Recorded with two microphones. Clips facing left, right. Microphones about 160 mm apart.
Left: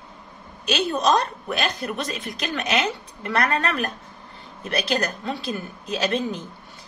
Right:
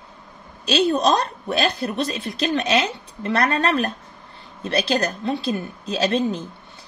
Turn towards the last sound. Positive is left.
turn(degrees=-30)  # may be behind; listen again after turning